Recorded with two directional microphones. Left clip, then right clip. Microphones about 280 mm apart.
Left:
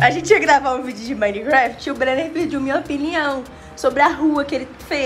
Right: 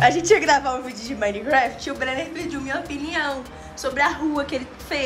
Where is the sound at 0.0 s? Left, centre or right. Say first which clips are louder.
Left 2 dB; centre.